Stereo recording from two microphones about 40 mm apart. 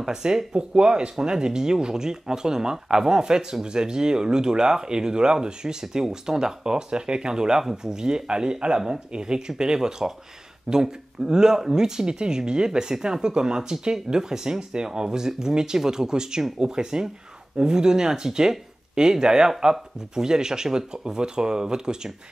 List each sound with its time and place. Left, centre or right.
0.0 s speech: centre